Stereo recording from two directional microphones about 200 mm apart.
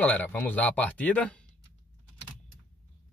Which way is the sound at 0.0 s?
10° left (ahead or behind).